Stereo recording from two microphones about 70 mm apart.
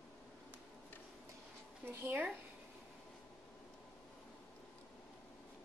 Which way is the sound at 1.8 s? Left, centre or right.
Right.